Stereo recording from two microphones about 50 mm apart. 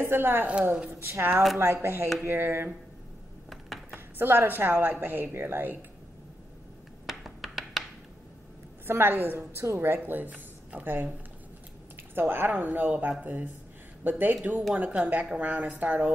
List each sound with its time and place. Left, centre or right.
0.0 s a woman's voice: right
3.4 s a sound: centre
3.9 s a woman's voice: right
7.1 s a sound: centre
8.8 s a woman's voice: right
10.0 s a woman's voice: right
12.2 s a woman's voice: right